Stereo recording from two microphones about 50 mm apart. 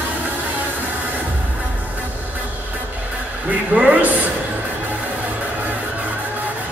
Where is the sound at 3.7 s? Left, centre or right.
Right.